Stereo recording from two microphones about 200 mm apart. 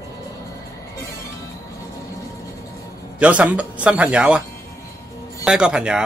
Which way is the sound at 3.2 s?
5° right (ahead or behind).